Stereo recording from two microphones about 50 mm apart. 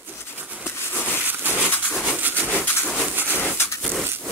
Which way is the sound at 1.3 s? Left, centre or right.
Right.